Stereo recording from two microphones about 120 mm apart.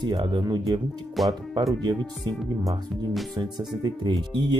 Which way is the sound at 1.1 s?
Centre (ahead or behind).